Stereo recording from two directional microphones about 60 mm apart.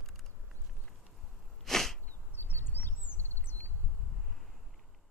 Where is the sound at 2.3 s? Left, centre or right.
Left.